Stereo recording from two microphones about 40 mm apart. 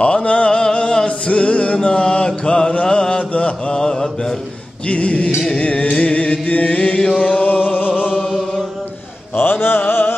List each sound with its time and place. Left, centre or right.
0.0 s a sound: left
0.6 s music: centre
1.8 s music: left
2.9 s mantra: centre
4.8 s music: left
7.4 s a sound: left
8.1 s chant: left
9.3 s music: left